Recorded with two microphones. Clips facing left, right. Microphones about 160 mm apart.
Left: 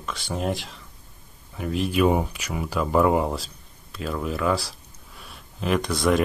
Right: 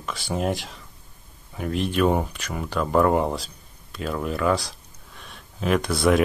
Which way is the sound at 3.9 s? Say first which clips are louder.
Right 1 dB; centre (ahead or behind).